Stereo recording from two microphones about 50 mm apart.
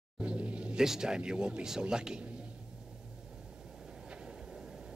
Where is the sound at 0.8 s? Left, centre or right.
Centre.